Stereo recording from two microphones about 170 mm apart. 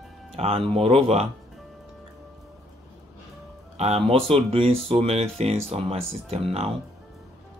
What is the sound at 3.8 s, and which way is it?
Speech, 35° right (ahead or behind).